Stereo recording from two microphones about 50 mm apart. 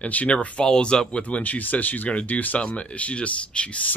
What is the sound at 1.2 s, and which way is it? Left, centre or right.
Speech, left.